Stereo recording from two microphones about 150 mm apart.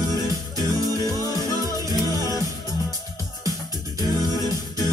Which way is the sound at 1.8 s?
25° right (ahead or behind).